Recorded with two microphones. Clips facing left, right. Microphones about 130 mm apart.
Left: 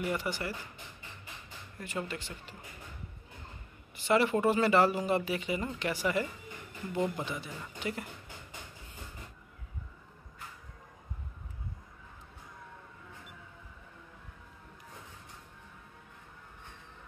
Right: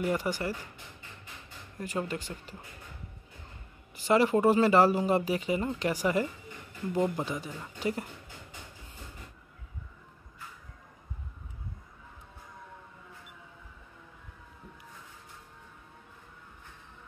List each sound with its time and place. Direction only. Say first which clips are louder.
0.1 s speech: right 4 dB; 40° right (ahead or behind)
1.8 s speech: right 4 dB; 40° right (ahead or behind)
3.9 s speech: right 3 dB; 35° right (ahead or behind)